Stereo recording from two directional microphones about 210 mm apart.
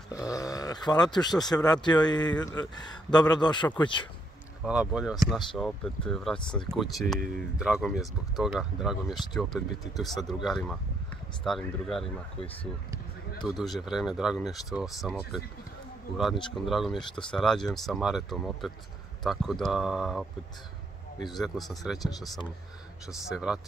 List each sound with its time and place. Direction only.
0.1 s a sound: 15° left (ahead or behind)
1.5 s a man's voice: 20° left (ahead or behind)
4.6 s speech: 5° right (ahead or behind)
13.6 s speech: centre (ahead or behind)
16.6 s speech: centre (ahead or behind)
21.3 s speech: centre (ahead or behind)